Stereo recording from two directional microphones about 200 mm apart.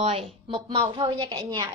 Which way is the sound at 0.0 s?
30° right (ahead or behind).